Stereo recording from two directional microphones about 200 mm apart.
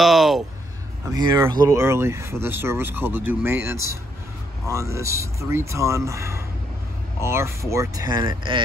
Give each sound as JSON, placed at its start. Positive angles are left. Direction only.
{"t": 0.0, "sound": "speech", "side_deg": 0}
{"t": 1.1, "sound": "speech", "side_deg": -20}